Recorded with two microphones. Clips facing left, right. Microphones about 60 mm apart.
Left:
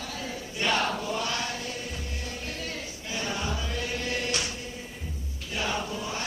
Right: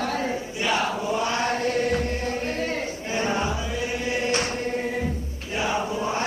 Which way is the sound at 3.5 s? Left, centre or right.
Centre.